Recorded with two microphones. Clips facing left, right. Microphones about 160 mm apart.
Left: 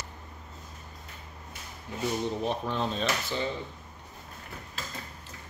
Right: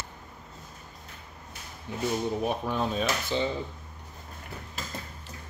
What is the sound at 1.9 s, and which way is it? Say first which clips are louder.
Speech: right 2 dB; 25° right (ahead or behind).